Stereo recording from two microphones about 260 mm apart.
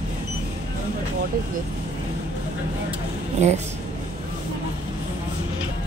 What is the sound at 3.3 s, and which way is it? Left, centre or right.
Speech, right.